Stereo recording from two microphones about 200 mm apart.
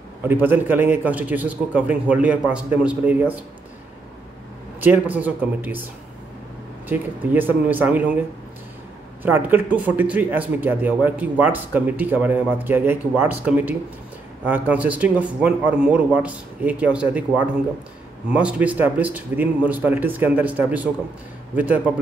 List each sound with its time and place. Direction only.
0.2 s speech: 10° right (ahead or behind)
4.8 s speech: 10° right (ahead or behind)
6.9 s speech: 10° right (ahead or behind)
9.2 s speech: 10° right (ahead or behind)